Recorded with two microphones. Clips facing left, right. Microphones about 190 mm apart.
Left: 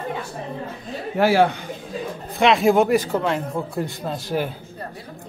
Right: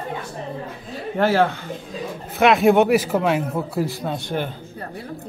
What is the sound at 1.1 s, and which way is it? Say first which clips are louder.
Speech: left 1 dB; 10° left (ahead or behind).